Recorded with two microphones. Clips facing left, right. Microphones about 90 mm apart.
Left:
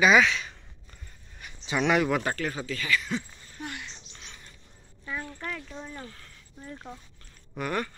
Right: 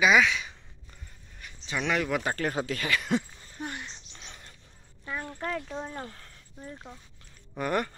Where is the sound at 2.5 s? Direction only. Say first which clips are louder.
Right 1 dB; 50° right (ahead or behind).